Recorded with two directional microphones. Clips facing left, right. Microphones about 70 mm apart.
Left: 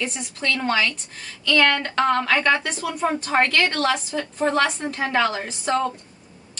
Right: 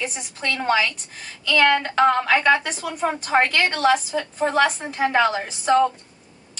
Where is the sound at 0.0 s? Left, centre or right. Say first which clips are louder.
Left 1 dB; centre.